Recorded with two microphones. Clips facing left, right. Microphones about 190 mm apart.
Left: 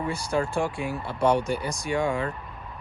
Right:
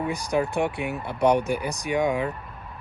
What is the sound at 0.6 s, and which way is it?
Speech, 65° right (ahead or behind).